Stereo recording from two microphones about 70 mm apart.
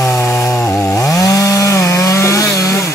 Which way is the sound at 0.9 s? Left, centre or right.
Left.